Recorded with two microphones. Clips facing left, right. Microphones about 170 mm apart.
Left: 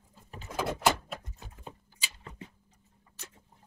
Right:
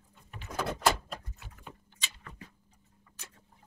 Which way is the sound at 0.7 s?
5° left (ahead or behind).